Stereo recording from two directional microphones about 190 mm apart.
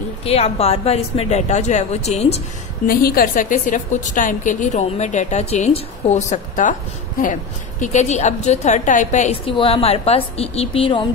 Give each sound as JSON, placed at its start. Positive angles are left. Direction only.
{"t": 0.2, "sound": "a woman's voice", "side_deg": 30}
{"t": 2.9, "sound": "a woman's voice", "side_deg": 50}
{"t": 7.8, "sound": "a woman's voice", "side_deg": 40}